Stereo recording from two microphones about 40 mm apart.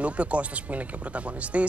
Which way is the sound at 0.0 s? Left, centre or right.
Right.